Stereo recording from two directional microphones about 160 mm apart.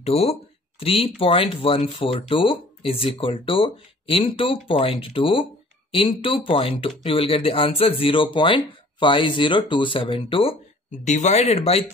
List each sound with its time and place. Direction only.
0.0 s speech: 40° left (ahead or behind)
10.9 s speech: 50° left (ahead or behind)